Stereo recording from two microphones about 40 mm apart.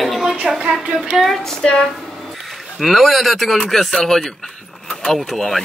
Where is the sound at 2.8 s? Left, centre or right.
Centre.